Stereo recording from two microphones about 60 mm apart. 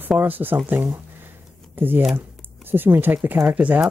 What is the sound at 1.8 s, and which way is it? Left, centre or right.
Speech, right.